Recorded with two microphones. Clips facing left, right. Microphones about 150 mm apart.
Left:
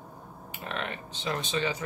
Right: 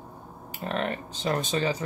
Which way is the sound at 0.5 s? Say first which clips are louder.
Right 6 dB; 40° right (ahead or behind).